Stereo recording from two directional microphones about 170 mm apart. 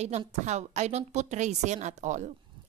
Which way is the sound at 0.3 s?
40° right (ahead or behind).